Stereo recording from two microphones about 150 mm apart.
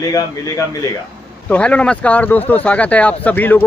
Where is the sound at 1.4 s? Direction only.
10° left (ahead or behind).